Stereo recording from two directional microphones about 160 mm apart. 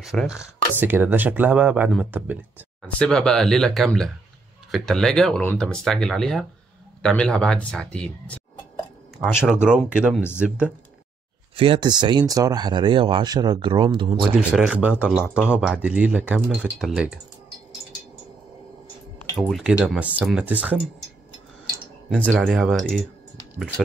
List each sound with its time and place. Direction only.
0.0 s speech: centre (ahead or behind)
3.0 s speech: 5° left (ahead or behind)
11.5 s speech: 35° right (ahead or behind)
14.3 s speech: 5° right (ahead or behind)
19.3 s speech: 5° right (ahead or behind)
22.6 s speech: centre (ahead or behind)